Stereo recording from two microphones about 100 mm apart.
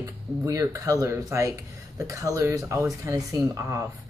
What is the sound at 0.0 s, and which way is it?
Speech, 35° right (ahead or behind).